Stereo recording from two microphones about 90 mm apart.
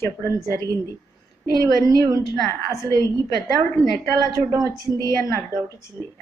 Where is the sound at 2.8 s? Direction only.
35° left (ahead or behind).